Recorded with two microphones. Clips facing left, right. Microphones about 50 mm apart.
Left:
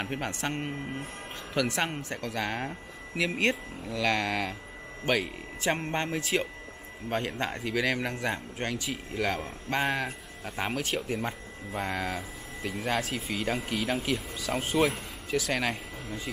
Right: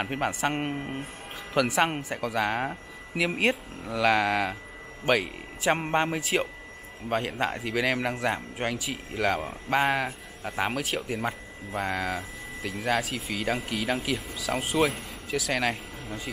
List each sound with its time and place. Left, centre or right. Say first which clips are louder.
0.0 s speech: right 5 dB; centre
0.6 s speech: right 3 dB; right
1.5 s speech: right 5 dB; centre
5.8 s speech: right 5 dB; centre
6.1 s speech: right 2 dB; centre